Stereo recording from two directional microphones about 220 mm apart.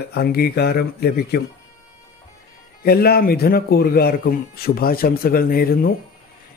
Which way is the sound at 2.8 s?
45° left (ahead or behind).